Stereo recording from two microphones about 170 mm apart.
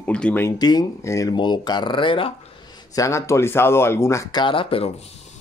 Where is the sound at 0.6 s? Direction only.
25° left (ahead or behind).